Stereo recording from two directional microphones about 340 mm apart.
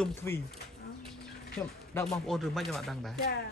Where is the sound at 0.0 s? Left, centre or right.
Centre.